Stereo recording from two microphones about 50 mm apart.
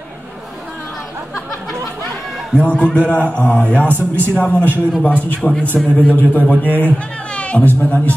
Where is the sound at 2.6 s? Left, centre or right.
Left.